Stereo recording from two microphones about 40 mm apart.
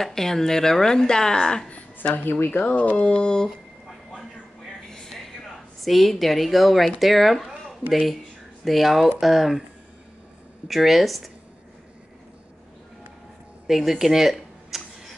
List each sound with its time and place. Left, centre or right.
0.0 s a woman's voice: centre
2.2 s speech: left
2.6 s a sound: left
4.9 s a sound: centre
5.8 s a woman's voice: centre
10.7 s a woman's voice: centre
13.7 s speech: centre